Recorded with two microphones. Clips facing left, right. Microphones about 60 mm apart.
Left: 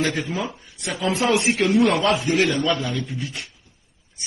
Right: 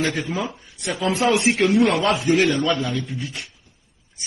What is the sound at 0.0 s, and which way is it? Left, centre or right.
A man's voice, centre.